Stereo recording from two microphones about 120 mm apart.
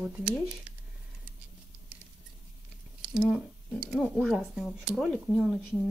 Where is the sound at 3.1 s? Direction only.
10° right (ahead or behind).